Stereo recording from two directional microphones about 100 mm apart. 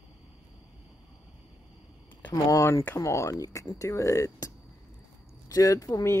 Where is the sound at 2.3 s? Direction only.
35° left (ahead or behind).